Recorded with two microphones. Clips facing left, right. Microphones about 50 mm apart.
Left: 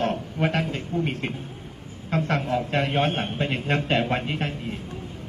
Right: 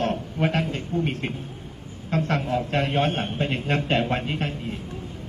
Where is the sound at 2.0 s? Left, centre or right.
Left.